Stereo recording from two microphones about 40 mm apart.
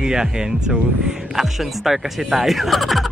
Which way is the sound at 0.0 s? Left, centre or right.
Centre.